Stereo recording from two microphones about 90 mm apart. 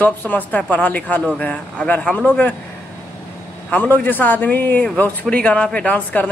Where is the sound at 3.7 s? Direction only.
20° left (ahead or behind).